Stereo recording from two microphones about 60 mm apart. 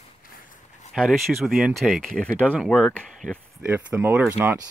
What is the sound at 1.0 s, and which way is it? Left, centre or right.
Speech, centre.